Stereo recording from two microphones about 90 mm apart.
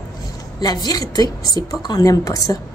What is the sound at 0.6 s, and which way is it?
A woman's voice, 45° left (ahead or behind).